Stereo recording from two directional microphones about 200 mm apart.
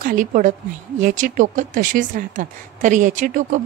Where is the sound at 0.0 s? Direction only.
40° right (ahead or behind).